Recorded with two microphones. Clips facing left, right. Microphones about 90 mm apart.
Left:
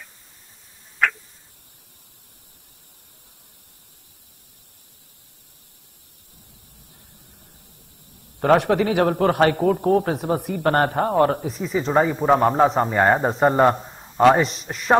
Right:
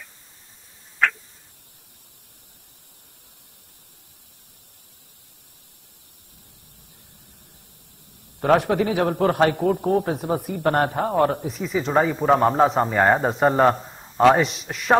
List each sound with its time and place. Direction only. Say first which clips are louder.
8.4 s a man's voice: left 1 dB; centre (ahead or behind)
14.4 s a man's voice: even; 35° left (ahead or behind)